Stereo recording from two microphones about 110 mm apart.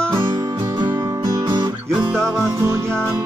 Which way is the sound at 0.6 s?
40° right (ahead or behind).